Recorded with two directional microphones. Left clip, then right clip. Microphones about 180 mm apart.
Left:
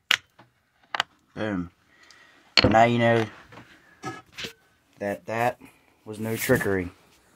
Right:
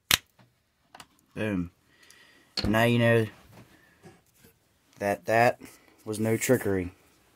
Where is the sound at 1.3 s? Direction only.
55° right (ahead or behind).